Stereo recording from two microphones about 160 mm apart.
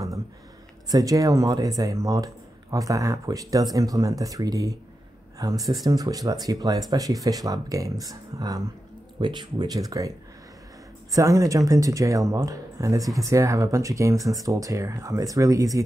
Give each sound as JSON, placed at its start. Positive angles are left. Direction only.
{"t": 0.9, "sound": "speech", "side_deg": -20}